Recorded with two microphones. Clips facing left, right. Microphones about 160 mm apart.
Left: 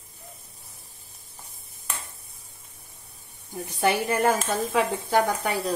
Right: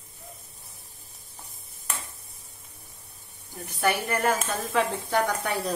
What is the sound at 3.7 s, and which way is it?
Speech, 25° left (ahead or behind).